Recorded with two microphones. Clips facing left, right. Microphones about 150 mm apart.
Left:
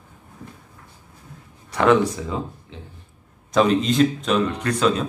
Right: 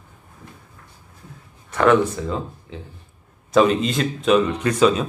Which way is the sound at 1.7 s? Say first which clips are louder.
Right 1 dB; 15° left (ahead or behind).